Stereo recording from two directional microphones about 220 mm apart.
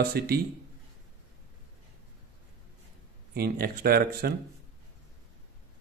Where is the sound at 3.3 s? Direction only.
45° right (ahead or behind).